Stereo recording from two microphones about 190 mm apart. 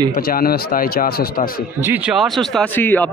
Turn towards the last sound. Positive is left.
turn(degrees=10)  # may be behind; listen again after turning